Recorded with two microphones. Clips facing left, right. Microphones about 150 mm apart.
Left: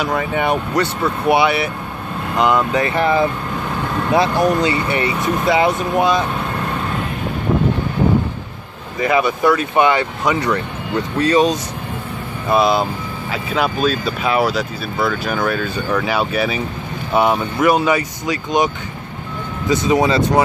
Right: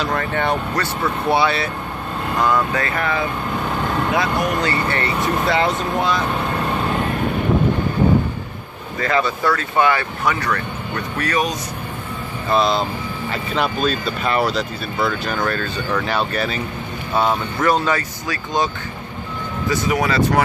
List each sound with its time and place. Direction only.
0.0 s speech: 10° left (ahead or behind); by 4.5 s 30° left (ahead or behind)
4.6 s speech: 15° left (ahead or behind)
9.0 s speech: 15° left (ahead or behind)
12.4 s speech: 10° left (ahead or behind)
19.7 s speech: 20° left (ahead or behind)